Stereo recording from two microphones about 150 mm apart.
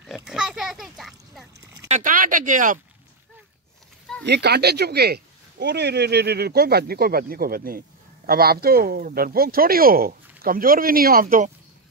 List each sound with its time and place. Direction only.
0.0 s pig: centre (ahead or behind)
1.9 s a sound: 60° right (ahead or behind)
4.4 s speech: 90° right
8.3 s speech: 90° right; by 11.5 s 60° right (ahead or behind)